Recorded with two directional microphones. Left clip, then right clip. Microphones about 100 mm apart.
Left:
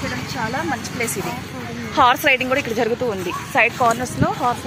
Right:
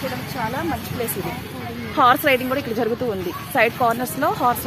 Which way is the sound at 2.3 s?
20° right (ahead or behind).